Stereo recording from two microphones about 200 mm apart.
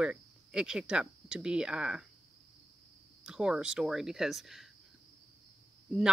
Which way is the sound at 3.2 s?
5° right (ahead or behind).